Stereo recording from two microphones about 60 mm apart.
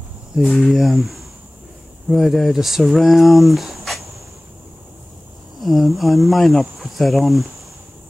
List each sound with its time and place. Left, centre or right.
0.4 s speech: centre
5.6 s speech: centre